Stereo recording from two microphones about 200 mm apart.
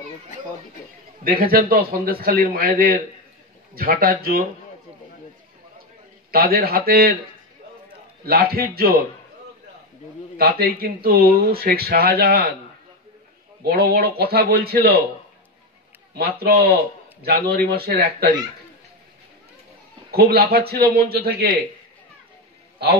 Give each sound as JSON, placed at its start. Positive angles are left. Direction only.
{"t": 1.2, "sound": "speech", "side_deg": -50}
{"t": 6.3, "sound": "speech", "side_deg": -50}
{"t": 8.3, "sound": "speech", "side_deg": -50}
{"t": 10.3, "sound": "speech", "side_deg": -50}
{"t": 13.6, "sound": "speech", "side_deg": -50}
{"t": 16.2, "sound": "speech", "side_deg": -50}
{"t": 20.1, "sound": "speech", "side_deg": -50}